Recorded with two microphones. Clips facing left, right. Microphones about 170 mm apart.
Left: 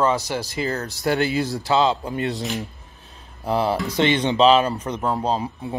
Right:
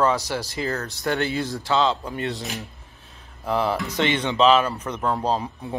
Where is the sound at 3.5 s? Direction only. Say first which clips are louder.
Left 2 dB; 30° left (ahead or behind).